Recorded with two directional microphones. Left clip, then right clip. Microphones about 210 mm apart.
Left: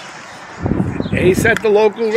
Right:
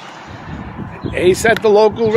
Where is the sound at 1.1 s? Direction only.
15° right (ahead or behind).